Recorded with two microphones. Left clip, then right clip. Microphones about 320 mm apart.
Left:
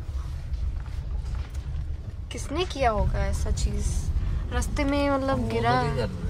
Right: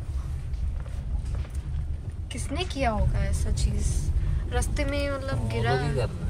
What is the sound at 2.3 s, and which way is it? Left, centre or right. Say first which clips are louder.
A woman's voice: left 3 dB; centre.